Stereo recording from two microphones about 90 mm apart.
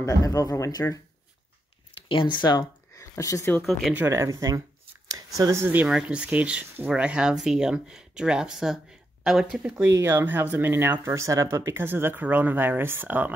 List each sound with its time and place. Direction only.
0.0 s speech: 40° left (ahead or behind)
2.0 s speech: 70° left (ahead or behind)
3.0 s a sound: 40° left (ahead or behind)
4.1 s speech: 35° right (ahead or behind)
5.9 s speech: 10° right (ahead or behind)
9.6 s speech: 15° right (ahead or behind)